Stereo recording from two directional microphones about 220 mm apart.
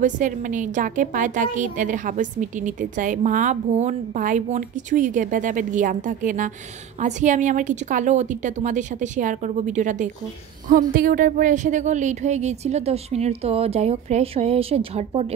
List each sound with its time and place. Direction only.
0.0 s a woman's voice: 35° right (ahead or behind)